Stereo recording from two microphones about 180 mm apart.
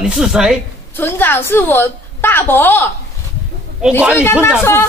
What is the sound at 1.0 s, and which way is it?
A woman's voice, 10° left (ahead or behind).